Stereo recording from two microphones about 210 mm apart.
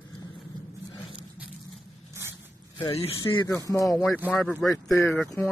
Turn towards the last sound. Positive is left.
turn(degrees=10)  # may be behind; listen again after turning